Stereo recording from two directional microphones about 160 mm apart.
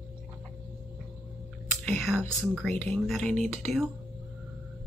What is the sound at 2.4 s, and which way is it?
Speech, 5° right (ahead or behind).